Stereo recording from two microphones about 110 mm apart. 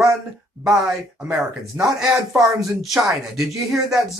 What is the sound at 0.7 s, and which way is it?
Speech, 5° right (ahead or behind).